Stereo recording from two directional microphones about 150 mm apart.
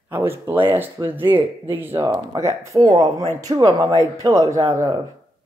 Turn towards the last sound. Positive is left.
turn(degrees=-25)  # may be behind; listen again after turning